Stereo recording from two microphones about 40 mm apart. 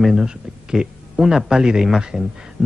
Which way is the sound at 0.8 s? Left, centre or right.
Right.